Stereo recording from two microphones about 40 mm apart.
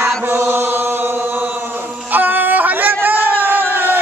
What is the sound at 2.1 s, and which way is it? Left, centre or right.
Music, right.